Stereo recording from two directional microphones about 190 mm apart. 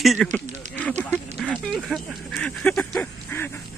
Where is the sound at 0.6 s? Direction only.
40° right (ahead or behind).